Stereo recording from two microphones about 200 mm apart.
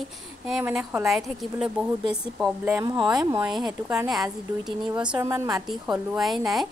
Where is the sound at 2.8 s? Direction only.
20° right (ahead or behind).